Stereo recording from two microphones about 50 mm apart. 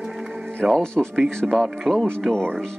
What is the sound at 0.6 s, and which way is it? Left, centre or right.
Speech, centre.